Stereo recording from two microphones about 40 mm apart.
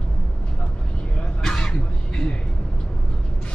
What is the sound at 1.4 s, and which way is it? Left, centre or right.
Throat clearing, centre.